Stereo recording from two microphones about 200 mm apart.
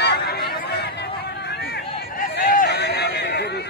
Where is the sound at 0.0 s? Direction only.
55° left (ahead or behind).